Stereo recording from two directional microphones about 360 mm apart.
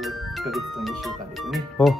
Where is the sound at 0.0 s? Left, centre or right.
Centre.